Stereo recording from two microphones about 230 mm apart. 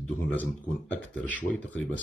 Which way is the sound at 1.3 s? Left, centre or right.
Centre.